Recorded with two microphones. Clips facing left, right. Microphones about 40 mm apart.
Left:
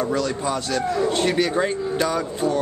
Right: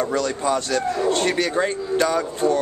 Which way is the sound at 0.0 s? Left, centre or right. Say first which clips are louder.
Right 1 dB; centre.